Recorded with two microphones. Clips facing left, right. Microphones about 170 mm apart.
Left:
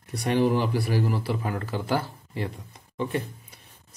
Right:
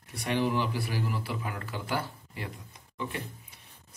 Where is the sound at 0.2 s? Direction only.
40° left (ahead or behind).